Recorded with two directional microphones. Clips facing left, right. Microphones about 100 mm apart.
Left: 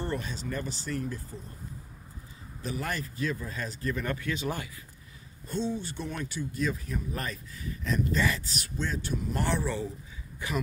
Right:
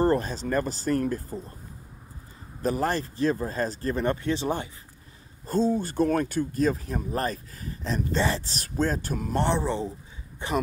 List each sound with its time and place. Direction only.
0.0 s speech: 40° right (ahead or behind)
2.6 s speech: 40° right (ahead or behind)
5.5 s speech: 40° right (ahead or behind)
9.3 s speech: 25° right (ahead or behind)